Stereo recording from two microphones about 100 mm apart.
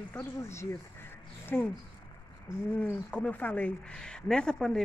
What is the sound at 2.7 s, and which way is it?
Speech, 15° left (ahead or behind).